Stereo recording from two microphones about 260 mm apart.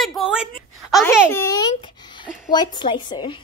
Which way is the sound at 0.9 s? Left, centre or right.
Centre.